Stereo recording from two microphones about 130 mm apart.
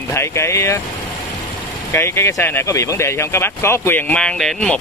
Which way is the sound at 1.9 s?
20° left (ahead or behind).